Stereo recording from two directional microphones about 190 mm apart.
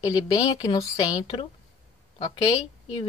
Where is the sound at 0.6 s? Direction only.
25° left (ahead or behind).